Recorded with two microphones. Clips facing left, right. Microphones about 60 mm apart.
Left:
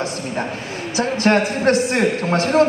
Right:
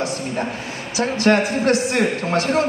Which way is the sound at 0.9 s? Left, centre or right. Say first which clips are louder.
Even; left.